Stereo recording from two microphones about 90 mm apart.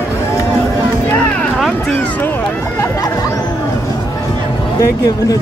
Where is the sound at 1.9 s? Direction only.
20° left (ahead or behind).